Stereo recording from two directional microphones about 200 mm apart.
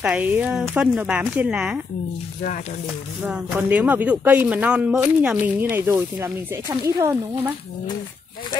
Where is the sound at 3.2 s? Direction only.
5° right (ahead or behind).